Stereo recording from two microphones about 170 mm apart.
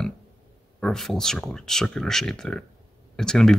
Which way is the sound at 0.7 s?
Centre (ahead or behind).